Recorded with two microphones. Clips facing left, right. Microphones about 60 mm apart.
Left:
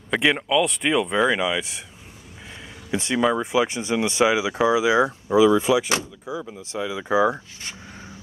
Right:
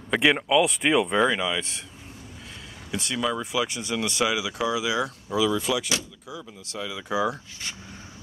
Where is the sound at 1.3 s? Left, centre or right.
Centre.